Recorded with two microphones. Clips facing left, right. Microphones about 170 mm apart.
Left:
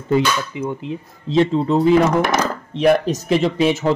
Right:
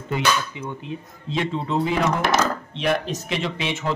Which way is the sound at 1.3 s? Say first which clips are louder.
Left 8 dB; 40° left (ahead or behind).